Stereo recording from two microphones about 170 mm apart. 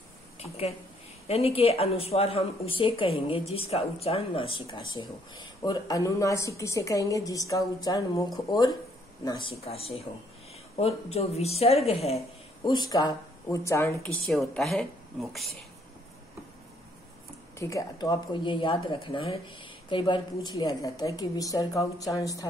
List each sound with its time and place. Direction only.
1.2 s a woman's voice: 35° left (ahead or behind)
12.6 s speech: 25° left (ahead or behind)
14.0 s a woman's voice: 5° left (ahead or behind)
17.6 s speech: 20° left (ahead or behind)